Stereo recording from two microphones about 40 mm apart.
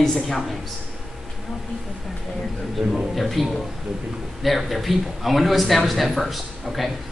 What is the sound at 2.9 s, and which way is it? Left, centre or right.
A man's voice, centre.